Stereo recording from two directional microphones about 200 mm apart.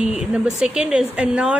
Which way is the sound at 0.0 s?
5° right (ahead or behind).